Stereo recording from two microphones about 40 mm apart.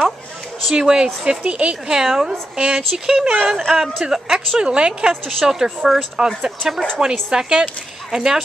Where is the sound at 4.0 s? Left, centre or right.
Centre.